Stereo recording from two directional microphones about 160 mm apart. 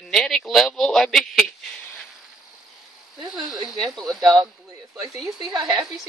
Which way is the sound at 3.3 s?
Centre (ahead or behind).